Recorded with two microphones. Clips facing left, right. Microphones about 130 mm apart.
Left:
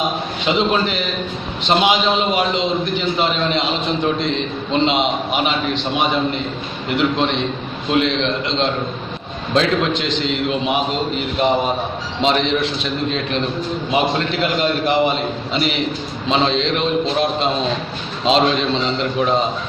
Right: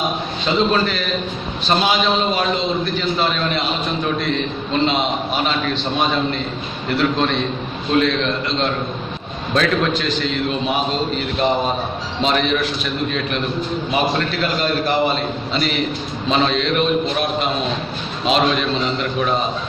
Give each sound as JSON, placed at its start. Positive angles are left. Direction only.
{"t": 0.5, "sound": "a man's voice", "side_deg": 20}